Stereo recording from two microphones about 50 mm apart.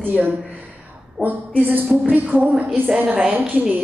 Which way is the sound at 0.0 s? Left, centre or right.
Right.